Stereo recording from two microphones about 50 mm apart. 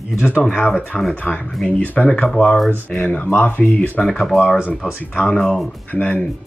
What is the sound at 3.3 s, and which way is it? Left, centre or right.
Speech, left.